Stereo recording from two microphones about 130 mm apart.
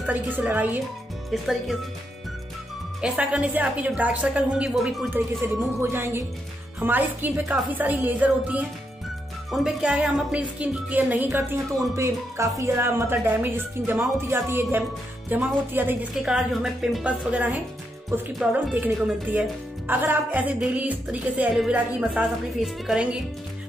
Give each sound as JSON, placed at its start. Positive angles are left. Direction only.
{"t": 0.0, "sound": "speech", "side_deg": -10}
{"t": 1.3, "sound": "a woman's voice", "side_deg": 0}
{"t": 3.0, "sound": "speech", "side_deg": -10}
{"t": 5.8, "sound": "a woman's voice", "side_deg": -20}
{"t": 16.2, "sound": "a woman's voice", "side_deg": -5}